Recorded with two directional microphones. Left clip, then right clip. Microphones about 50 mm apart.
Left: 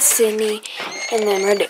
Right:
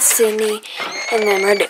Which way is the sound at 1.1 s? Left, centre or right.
Right.